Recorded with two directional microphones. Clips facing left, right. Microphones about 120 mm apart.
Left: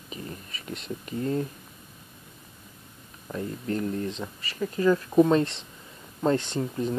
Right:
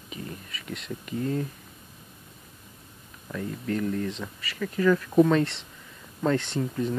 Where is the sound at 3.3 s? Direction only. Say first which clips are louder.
Even; 30° left (ahead or behind).